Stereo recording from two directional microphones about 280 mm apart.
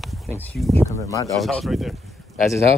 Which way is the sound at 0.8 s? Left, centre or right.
Centre.